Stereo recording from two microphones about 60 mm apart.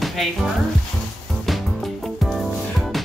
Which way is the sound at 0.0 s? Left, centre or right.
Centre.